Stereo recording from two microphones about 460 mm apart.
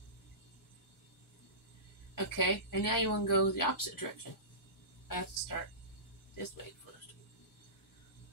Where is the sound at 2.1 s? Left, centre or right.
Left.